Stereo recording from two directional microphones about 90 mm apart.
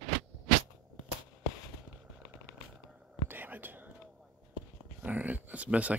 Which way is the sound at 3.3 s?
20° right (ahead or behind).